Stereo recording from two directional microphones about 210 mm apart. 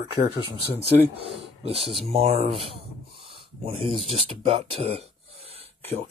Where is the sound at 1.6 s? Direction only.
30° right (ahead or behind).